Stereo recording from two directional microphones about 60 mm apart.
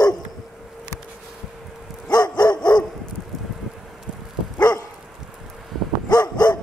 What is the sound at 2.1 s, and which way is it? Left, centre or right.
Dog, left.